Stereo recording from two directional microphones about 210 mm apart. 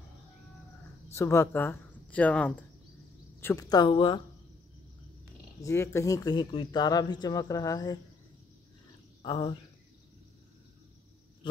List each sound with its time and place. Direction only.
1.1 s a woman's voice: 10° left (ahead or behind)
5.6 s speech: 15° left (ahead or behind)
9.2 s a woman's voice: 20° left (ahead or behind)